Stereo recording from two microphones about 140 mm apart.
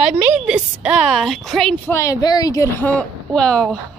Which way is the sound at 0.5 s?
5° right (ahead or behind).